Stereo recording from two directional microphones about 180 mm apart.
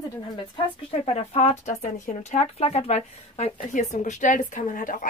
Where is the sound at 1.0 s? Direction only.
35° left (ahead or behind).